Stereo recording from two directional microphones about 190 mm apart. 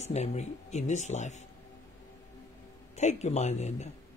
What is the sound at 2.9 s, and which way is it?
Speech, 35° left (ahead or behind).